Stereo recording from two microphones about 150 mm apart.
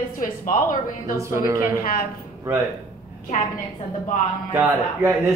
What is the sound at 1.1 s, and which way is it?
Speech, 20° right (ahead or behind).